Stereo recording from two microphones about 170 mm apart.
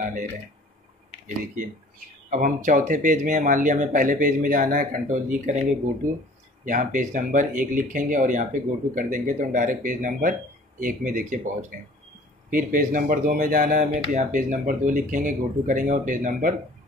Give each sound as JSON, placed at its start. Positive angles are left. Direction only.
{"t": 1.2, "sound": "speech", "side_deg": -50}
{"t": 6.6, "sound": "speech", "side_deg": -50}